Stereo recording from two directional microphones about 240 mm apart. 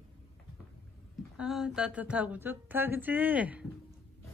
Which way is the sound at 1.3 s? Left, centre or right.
Centre.